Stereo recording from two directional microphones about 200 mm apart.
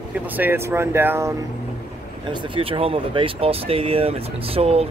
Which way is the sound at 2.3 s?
25° right (ahead or behind).